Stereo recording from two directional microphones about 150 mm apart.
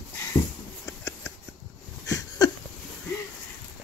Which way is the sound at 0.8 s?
20° left (ahead or behind).